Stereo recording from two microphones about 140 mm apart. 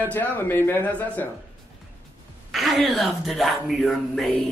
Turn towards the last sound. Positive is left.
turn(degrees=0)  # may be behind; listen again after turning